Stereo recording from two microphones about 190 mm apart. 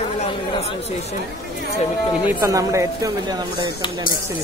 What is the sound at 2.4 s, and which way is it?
A woman's voice, 15° right (ahead or behind).